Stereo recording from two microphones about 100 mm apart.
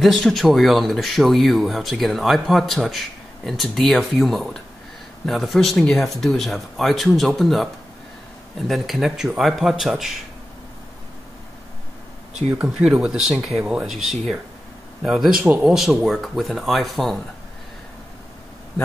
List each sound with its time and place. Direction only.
0.0 s speech: centre (ahead or behind)
13.0 s speech: 5° right (ahead or behind)